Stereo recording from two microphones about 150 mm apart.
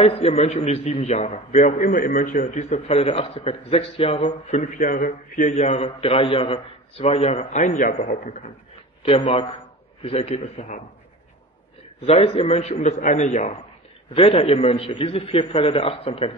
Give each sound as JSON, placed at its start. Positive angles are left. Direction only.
{"t": 0.0, "sound": "a man's voice", "side_deg": 45}
{"t": 9.0, "sound": "a man's voice", "side_deg": 40}
{"t": 12.1, "sound": "a man's voice", "side_deg": 40}
{"t": 14.1, "sound": "a man's voice", "side_deg": 40}